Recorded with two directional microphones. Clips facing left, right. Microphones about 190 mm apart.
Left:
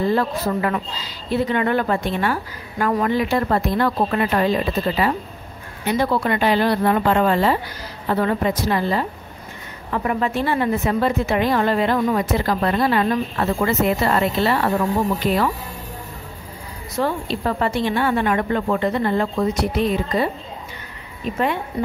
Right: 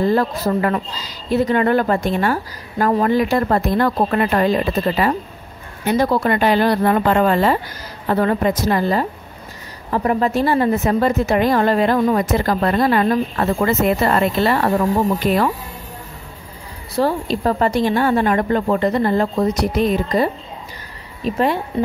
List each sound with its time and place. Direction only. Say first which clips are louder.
0.1 s speech: right 3 dB; 40° right (ahead or behind)
16.9 s a woman's voice: right 4 dB; 40° right (ahead or behind)